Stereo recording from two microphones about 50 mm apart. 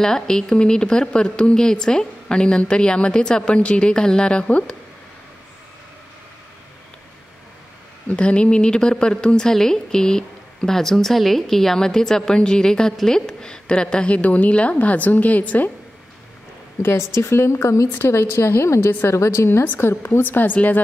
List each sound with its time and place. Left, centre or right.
0.0 s a woman's voice: centre
8.1 s a woman's voice: left
14.1 s a woman's voice: left
16.8 s a woman's voice: left
17.9 s a woman's voice: left
19.8 s a woman's voice: left